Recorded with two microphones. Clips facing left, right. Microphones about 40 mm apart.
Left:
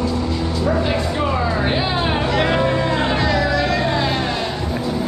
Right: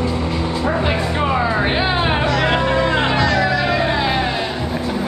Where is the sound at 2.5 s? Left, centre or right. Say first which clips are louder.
Right 1 dB; right.